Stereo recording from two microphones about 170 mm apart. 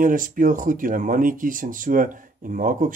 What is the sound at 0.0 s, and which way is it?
Speech, 50° right (ahead or behind).